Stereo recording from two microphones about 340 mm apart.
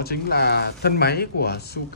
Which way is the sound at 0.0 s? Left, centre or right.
Left.